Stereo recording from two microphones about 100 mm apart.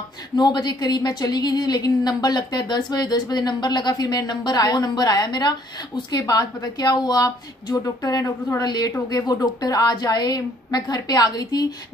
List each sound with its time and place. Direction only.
0.4 s a woman's voice: 45° left (ahead or behind)